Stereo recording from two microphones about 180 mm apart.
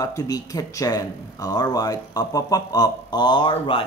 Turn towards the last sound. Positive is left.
turn(degrees=25)  # may be behind; listen again after turning